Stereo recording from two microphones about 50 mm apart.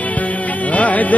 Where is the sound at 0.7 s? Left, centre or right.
Left.